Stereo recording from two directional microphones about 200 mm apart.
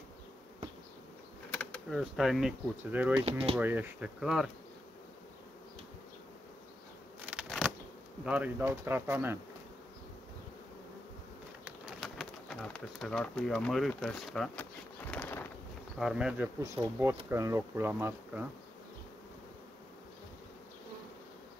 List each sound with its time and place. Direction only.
1.5 s speech: 5° left (ahead or behind)
3.2 s speech: 30° right (ahead or behind)
3.5 s speech: 10° right (ahead or behind)
7.2 s a sound: 5° right (ahead or behind)
8.3 s speech: 10° right (ahead or behind)
11.6 s pigeon: centre (ahead or behind)
16.0 s speech: 5° right (ahead or behind)